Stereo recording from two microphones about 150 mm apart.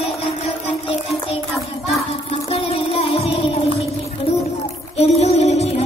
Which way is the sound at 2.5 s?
40° left (ahead or behind).